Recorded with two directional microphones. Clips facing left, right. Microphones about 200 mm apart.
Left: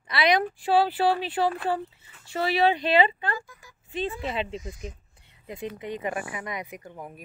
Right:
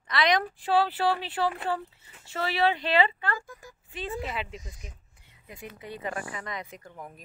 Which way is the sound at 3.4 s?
50° right (ahead or behind).